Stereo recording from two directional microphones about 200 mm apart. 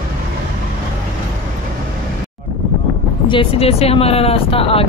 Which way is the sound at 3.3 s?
30° left (ahead or behind).